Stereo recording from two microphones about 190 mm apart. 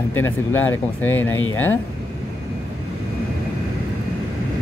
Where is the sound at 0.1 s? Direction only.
10° left (ahead or behind).